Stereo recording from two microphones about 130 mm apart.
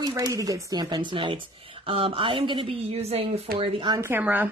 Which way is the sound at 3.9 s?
20° right (ahead or behind).